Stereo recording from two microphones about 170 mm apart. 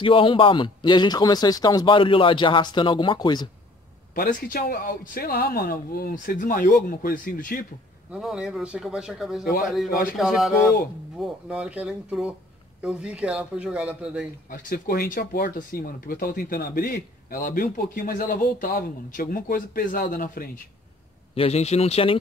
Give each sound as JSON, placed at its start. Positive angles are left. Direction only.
{"t": 0.0, "sound": "a man's voice", "side_deg": 30}
{"t": 4.1, "sound": "speech", "side_deg": 55}
{"t": 8.1, "sound": "speech", "side_deg": -5}
{"t": 14.5, "sound": "speech", "side_deg": 60}
{"t": 21.4, "sound": "speech", "side_deg": 40}